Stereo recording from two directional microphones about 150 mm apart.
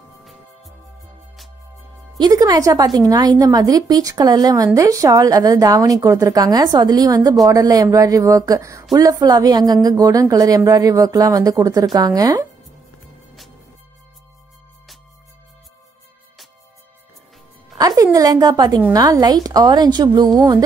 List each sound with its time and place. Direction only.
0.2 s music: centre (ahead or behind)
2.1 s a woman's voice: 25° right (ahead or behind)
17.7 s a woman's voice: 25° right (ahead or behind)